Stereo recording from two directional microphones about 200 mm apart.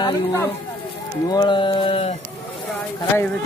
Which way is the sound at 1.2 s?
20° left (ahead or behind).